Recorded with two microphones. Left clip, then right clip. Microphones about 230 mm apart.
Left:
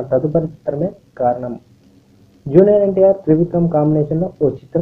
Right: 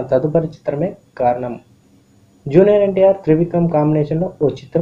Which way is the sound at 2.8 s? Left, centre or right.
Centre.